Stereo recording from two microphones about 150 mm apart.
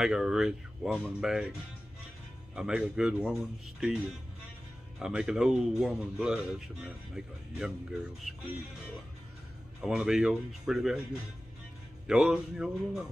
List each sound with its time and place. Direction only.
0.0 s speech: 5° right (ahead or behind)
2.5 s speech: 5° right (ahead or behind)
9.8 s speech: 5° right (ahead or behind)
12.1 s speech: 5° right (ahead or behind)